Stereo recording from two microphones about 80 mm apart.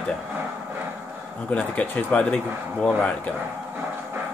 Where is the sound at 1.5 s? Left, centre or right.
Centre.